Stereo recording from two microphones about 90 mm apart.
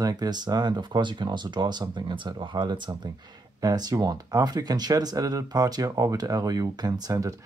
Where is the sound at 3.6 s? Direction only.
45° right (ahead or behind).